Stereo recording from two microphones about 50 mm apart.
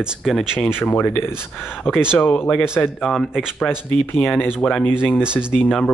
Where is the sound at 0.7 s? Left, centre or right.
Left.